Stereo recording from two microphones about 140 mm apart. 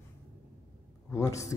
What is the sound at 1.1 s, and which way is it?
Speech, 20° left (ahead or behind).